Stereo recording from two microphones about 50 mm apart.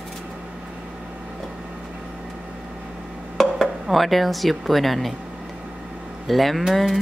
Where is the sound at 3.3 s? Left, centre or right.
Centre.